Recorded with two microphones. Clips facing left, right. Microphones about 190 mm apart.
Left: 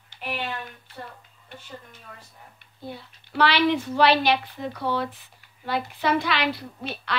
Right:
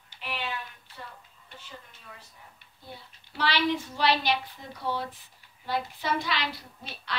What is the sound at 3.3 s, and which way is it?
A child's voice, 70° left (ahead or behind).